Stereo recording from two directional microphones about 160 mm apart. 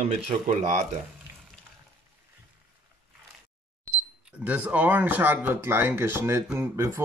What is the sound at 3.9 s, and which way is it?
Speech, 10° right (ahead or behind).